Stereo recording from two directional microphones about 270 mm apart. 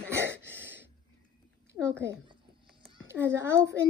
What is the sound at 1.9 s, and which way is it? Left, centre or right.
Speech, right.